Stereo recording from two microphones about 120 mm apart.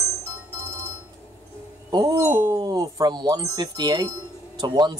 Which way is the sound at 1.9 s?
25° right (ahead or behind).